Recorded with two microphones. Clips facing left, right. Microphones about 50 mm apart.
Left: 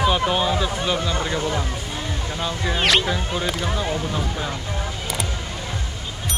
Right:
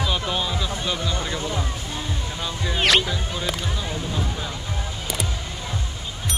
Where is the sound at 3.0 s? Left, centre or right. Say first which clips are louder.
Left 3 dB; left.